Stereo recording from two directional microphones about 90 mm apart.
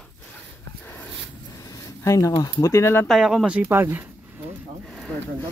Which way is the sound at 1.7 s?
35° left (ahead or behind).